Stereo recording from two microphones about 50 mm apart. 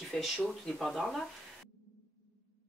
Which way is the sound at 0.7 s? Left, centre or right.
Centre.